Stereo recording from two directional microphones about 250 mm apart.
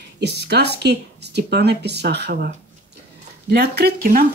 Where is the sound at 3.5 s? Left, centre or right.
Right.